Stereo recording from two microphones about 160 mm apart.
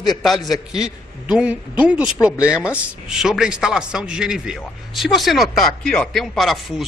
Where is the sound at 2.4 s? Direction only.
15° left (ahead or behind).